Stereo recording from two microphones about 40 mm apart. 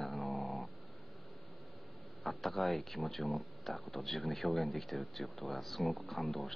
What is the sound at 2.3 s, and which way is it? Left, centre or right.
Music, centre.